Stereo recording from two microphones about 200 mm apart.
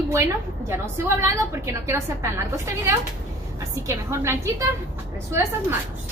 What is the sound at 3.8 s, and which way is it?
A woman's voice, 15° right (ahead or behind).